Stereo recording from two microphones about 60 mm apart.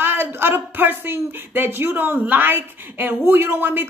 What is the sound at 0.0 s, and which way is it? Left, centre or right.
Speech, right.